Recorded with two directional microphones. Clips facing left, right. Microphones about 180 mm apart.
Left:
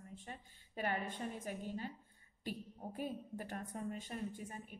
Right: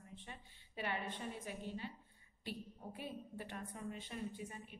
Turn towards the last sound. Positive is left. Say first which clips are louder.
# left 1 dB
turn(degrees=45)  # may be behind; listen again after turning